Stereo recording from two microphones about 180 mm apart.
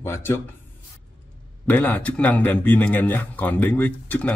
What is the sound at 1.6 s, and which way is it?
Speech, 10° left (ahead or behind).